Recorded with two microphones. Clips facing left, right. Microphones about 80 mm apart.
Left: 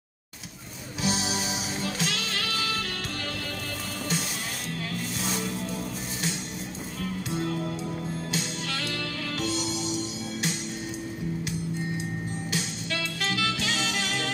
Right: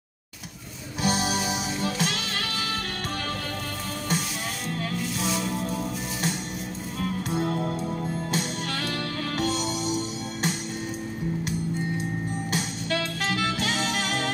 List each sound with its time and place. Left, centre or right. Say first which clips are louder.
1.0 s music: right 4 dB; right
7.2 s music: right 2 dB; right
12.5 s music: right 5 dB; right